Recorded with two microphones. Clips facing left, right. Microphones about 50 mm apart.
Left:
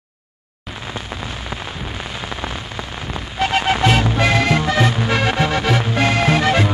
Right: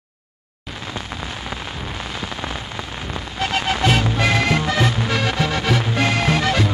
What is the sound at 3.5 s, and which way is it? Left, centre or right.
Music, left.